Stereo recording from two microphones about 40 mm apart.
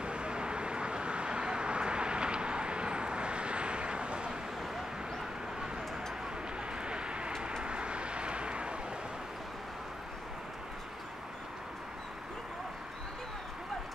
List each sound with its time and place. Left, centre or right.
0.0 s vehicle: right
6.7 s vehicle: right